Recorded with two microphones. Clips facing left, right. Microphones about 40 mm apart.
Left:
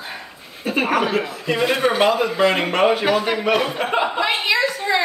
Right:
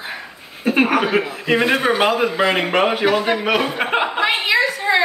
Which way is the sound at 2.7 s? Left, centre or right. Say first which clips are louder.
Even; right.